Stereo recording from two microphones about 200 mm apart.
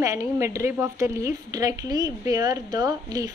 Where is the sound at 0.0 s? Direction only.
15° right (ahead or behind).